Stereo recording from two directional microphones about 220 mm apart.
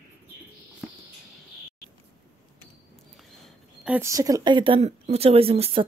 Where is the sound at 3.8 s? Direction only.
10° right (ahead or behind).